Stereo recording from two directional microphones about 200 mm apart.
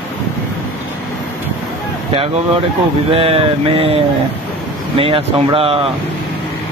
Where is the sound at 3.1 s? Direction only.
25° right (ahead or behind).